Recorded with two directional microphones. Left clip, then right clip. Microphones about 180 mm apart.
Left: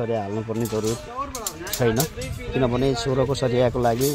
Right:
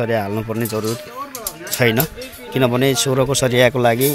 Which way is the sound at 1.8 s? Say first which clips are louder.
Right 6 dB; 15° right (ahead or behind).